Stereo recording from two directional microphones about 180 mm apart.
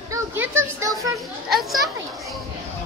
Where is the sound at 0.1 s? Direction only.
10° right (ahead or behind).